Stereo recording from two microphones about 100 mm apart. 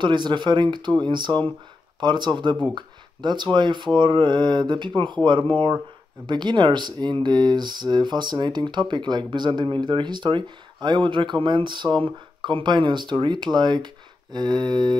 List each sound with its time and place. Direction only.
0.0 s speech: 50° right (ahead or behind)